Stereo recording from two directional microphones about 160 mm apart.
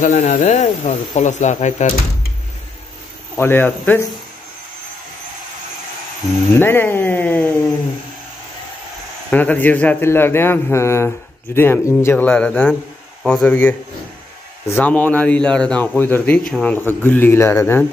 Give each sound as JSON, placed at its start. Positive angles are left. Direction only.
{"t": 0.0, "sound": "speech", "side_deg": 50}
{"t": 3.3, "sound": "a man's voice", "side_deg": 15}
{"t": 6.5, "sound": "a man's voice", "side_deg": 15}
{"t": 9.3, "sound": "a man's voice", "side_deg": 10}